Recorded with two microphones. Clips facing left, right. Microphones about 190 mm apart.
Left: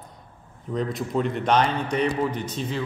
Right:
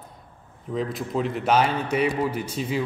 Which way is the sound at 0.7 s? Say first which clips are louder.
Left 1 dB; centre (ahead or behind).